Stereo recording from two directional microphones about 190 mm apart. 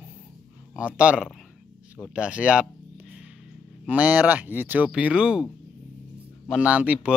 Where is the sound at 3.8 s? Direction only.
10° right (ahead or behind).